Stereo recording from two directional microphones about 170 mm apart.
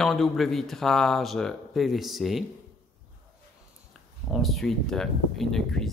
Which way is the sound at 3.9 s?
Centre (ahead or behind).